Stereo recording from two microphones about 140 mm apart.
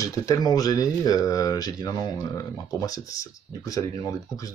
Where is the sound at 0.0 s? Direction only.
25° left (ahead or behind).